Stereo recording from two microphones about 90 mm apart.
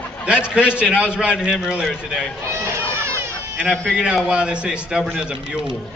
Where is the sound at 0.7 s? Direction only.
10° right (ahead or behind).